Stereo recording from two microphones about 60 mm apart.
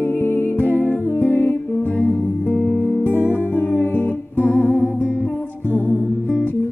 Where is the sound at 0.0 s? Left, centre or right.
Left.